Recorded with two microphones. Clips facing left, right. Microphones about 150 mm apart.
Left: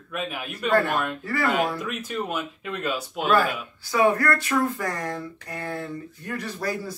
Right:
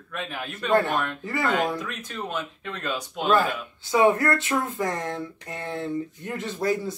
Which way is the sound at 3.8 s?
20° right (ahead or behind).